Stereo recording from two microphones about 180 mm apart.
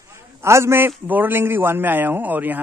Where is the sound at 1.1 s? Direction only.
10° right (ahead or behind).